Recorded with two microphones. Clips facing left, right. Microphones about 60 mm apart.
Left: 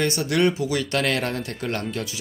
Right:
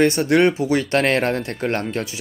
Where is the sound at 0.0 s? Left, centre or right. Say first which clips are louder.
Right 6 dB; right.